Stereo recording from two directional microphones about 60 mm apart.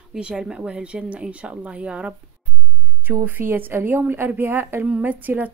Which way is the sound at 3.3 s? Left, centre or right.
Right.